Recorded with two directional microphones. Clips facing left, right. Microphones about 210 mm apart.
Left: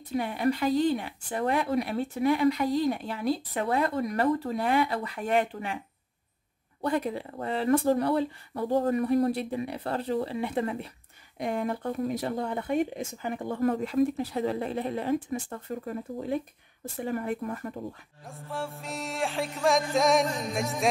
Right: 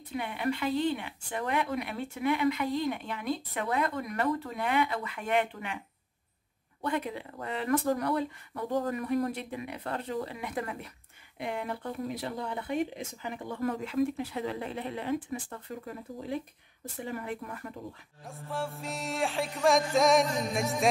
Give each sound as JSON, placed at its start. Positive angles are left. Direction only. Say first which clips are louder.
{"t": 0.1, "sound": "speech", "louder": "left 5 dB", "side_deg": 40}
{"t": 6.8, "sound": "speech", "louder": "left 4 dB", "side_deg": 40}
{"t": 11.3, "sound": "speech", "louder": "left 5 dB", "side_deg": 40}
{"t": 18.2, "sound": "music", "louder": "even", "side_deg": 0}